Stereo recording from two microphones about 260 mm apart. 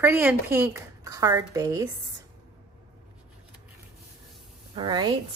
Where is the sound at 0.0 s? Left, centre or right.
Centre.